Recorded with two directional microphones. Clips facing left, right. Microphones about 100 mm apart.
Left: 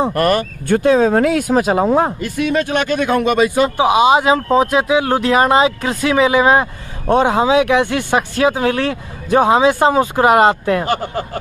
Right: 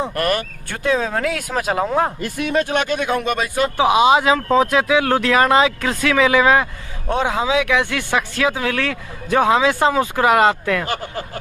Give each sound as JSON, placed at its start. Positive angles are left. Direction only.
{"t": 0.0, "sound": "speech", "side_deg": 35}
{"t": 2.5, "sound": "speech", "side_deg": -25}
{"t": 3.0, "sound": "speech", "side_deg": -5}
{"t": 3.3, "sound": "speech", "side_deg": 15}
{"t": 7.1, "sound": "speech", "side_deg": 45}
{"t": 7.9, "sound": "speech", "side_deg": 25}